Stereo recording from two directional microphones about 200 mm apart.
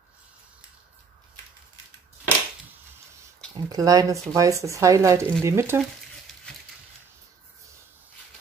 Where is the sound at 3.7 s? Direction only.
20° right (ahead or behind).